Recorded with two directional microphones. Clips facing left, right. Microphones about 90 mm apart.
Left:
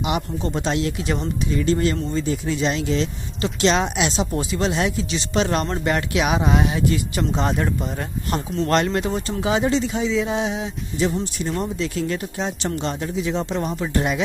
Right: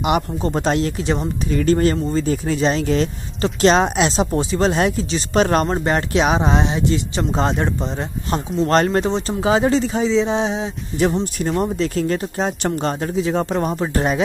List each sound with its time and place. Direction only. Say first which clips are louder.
0.4 s speech: right 4 dB; 45° right (ahead or behind); by 8.4 s 25° right (ahead or behind)
8.6 s speech: right 4 dB; 40° right (ahead or behind)
11.6 s speech: right 5 dB; 40° right (ahead or behind)